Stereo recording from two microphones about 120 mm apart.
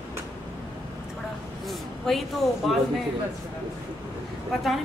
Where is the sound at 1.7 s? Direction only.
Centre (ahead or behind).